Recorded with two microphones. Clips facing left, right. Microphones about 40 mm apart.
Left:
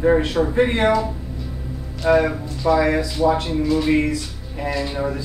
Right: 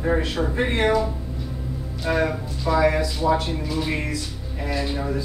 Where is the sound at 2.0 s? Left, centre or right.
Left.